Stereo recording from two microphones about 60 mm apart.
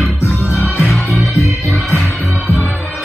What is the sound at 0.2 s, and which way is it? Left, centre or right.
Music, left.